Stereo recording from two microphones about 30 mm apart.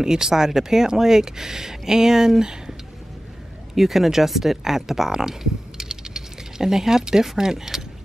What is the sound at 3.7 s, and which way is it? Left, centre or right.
Speech, centre.